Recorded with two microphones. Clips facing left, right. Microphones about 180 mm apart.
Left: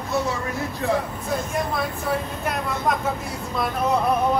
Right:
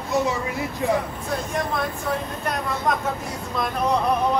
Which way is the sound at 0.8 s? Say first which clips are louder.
Right 1 dB; 15° right (ahead or behind).